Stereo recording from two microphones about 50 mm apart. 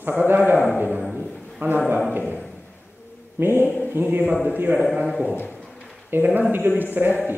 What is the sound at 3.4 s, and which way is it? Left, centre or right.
A man's voice, right.